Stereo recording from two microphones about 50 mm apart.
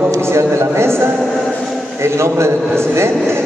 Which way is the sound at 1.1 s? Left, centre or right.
Centre.